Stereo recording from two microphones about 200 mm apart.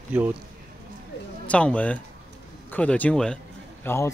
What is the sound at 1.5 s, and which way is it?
Speech, 5° left (ahead or behind).